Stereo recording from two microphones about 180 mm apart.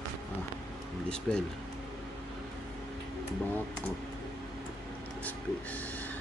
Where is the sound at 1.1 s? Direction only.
5° left (ahead or behind).